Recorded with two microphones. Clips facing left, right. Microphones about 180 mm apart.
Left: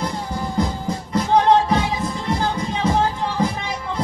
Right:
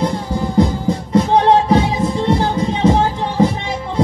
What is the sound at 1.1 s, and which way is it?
Music, 30° right (ahead or behind).